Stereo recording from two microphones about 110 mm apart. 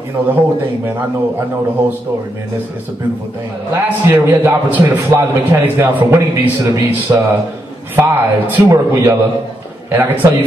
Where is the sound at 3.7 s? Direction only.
20° right (ahead or behind).